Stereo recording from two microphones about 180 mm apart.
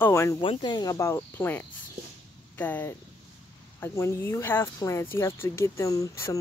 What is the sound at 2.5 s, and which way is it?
Speech, 10° left (ahead or behind).